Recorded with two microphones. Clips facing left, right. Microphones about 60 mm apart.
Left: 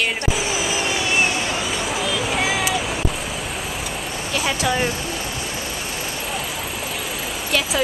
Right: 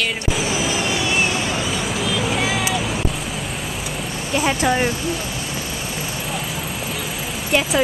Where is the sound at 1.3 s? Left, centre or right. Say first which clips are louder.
Right 1 dB; centre.